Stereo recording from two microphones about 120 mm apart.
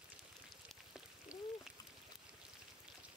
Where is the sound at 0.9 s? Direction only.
5° right (ahead or behind).